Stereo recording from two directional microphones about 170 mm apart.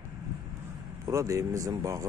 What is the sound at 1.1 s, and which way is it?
Speech, 20° right (ahead or behind).